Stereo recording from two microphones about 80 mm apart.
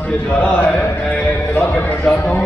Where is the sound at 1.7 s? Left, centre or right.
Left.